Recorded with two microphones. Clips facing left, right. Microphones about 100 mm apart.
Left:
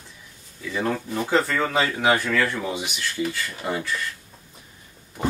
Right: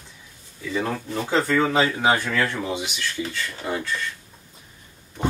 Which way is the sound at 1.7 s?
20° right (ahead or behind).